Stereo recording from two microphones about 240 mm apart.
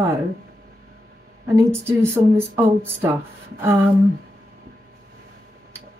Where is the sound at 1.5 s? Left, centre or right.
Centre.